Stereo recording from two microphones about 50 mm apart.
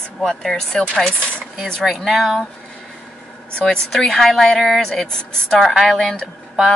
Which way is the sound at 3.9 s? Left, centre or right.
Centre.